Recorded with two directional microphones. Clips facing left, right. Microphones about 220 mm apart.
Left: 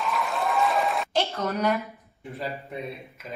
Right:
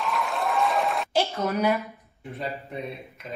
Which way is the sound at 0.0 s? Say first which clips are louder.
Even; centre (ahead or behind).